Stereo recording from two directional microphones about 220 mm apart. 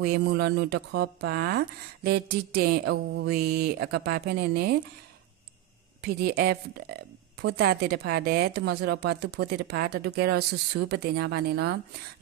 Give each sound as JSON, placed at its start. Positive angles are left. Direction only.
{"t": 0.0, "sound": "a woman's voice", "side_deg": -45}
{"t": 6.0, "sound": "a woman's voice", "side_deg": -45}